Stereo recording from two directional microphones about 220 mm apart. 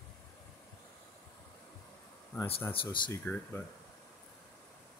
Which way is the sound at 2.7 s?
25° left (ahead or behind).